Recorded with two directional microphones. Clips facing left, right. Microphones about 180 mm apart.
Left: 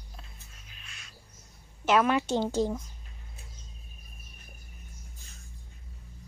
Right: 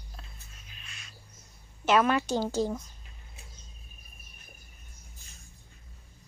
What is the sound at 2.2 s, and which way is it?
Speech, 25° left (ahead or behind).